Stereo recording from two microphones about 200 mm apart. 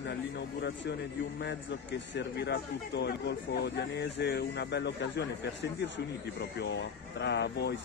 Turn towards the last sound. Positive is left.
turn(degrees=60)  # may be behind; listen again after turning